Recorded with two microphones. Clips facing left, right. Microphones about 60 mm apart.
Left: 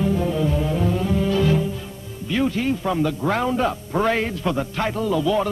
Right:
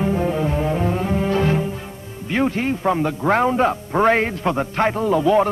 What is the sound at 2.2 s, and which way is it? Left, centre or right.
A man's voice, right.